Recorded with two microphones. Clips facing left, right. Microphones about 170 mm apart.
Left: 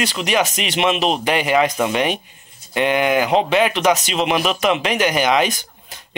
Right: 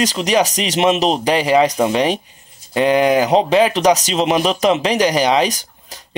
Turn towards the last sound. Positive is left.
turn(degrees=-40)  # may be behind; listen again after turning